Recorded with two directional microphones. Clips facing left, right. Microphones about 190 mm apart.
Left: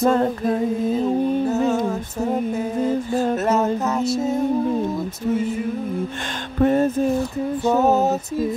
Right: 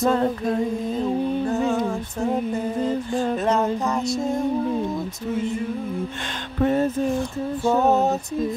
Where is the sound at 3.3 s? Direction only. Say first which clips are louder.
Left 2 dB; 5° left (ahead or behind).